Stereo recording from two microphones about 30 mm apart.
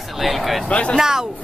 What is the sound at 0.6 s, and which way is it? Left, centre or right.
Speech, left.